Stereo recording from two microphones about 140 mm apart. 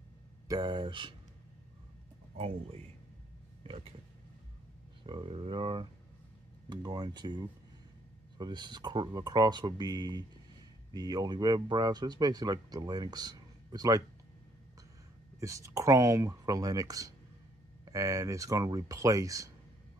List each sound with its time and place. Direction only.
0.5 s speech: 30° right (ahead or behind)
2.3 s speech: 50° right (ahead or behind)
5.0 s speech: 35° right (ahead or behind)
15.4 s speech: 25° right (ahead or behind)